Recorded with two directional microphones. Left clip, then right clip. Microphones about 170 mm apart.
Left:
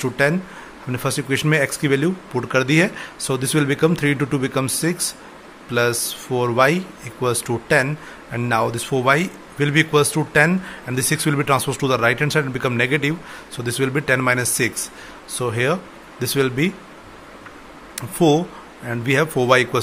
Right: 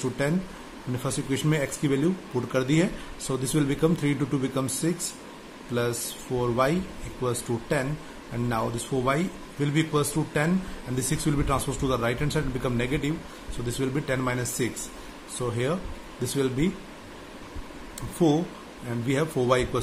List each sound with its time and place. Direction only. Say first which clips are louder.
0.2 s speech: left 10 dB; 15° left (ahead or behind)
17.9 s speech: left 7 dB; 15° left (ahead or behind)